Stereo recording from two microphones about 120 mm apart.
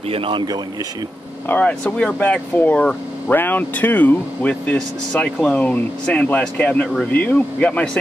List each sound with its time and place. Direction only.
0.1 s speech: 45° right (ahead or behind)
1.5 s speech: 10° left (ahead or behind)